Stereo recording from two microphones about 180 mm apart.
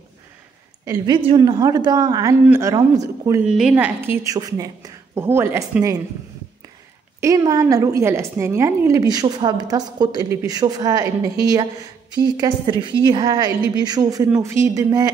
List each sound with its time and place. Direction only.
0.8 s a woman's voice: 20° right (ahead or behind)
3.4 s a woman's voice: centre (ahead or behind)
7.2 s a woman's voice: 20° right (ahead or behind)